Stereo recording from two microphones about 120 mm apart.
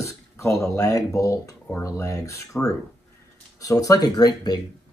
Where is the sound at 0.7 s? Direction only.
25° left (ahead or behind).